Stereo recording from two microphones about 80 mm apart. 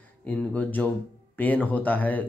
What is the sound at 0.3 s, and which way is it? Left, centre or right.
Speech, centre.